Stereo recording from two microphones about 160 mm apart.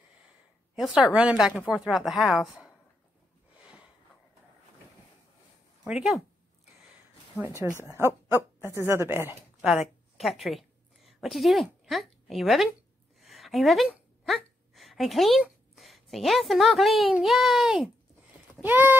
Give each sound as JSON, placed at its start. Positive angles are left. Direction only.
{"t": 0.7, "sound": "speech", "side_deg": 0}
{"t": 5.9, "sound": "speech", "side_deg": 0}
{"t": 7.7, "sound": "speech", "side_deg": 15}
{"t": 8.5, "sound": "speech", "side_deg": -15}
{"t": 9.6, "sound": "a woman's voice", "side_deg": -5}